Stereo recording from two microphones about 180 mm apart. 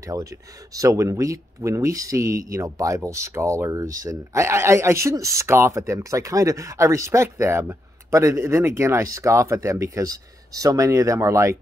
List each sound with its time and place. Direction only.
0.0 s a man's voice: 20° right (ahead or behind)